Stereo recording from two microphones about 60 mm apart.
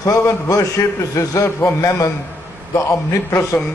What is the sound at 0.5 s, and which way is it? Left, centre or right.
A man's voice, left.